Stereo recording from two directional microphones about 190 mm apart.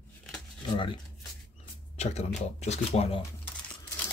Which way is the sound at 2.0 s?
35° left (ahead or behind).